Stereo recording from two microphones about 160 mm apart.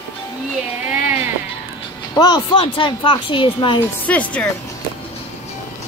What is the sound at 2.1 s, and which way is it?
Speech, 25° left (ahead or behind).